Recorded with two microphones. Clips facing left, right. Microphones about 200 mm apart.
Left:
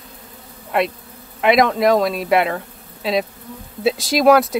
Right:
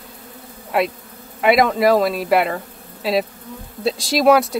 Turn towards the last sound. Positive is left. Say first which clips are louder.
# left 1 dB
turn(degrees=0)  # may be behind; listen again after turning